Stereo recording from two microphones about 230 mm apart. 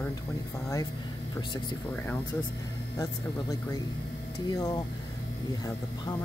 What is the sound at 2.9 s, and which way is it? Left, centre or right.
Speech, centre.